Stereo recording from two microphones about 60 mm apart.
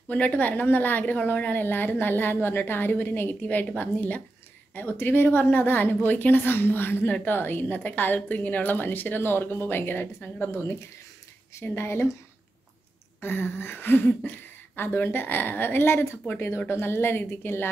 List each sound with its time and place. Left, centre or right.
0.1 s a woman's voice: left
10.5 s speech: left
11.6 s speech: left
13.2 s a woman's voice: left